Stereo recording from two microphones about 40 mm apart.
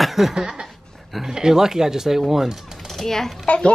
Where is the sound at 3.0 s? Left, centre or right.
Centre.